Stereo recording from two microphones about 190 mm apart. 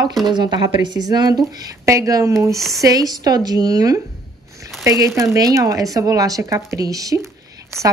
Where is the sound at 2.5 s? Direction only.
Centre (ahead or behind).